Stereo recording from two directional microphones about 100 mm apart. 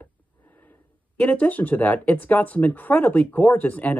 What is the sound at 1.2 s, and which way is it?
Speech, 15° left (ahead or behind).